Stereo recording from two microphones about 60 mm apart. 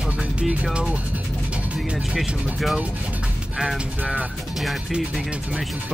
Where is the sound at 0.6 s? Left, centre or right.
Centre.